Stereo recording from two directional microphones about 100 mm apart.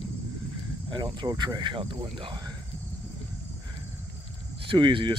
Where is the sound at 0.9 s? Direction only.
50° right (ahead or behind).